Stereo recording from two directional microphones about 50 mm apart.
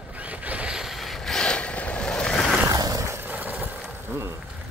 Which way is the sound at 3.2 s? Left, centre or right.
Right.